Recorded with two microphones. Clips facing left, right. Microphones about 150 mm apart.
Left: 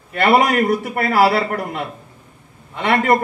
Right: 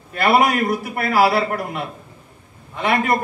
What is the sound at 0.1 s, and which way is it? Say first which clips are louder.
Speech: left 2 dB; 70° left (ahead or behind).